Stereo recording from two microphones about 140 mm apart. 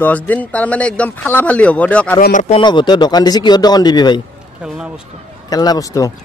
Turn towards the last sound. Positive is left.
turn(degrees=25)  # may be behind; listen again after turning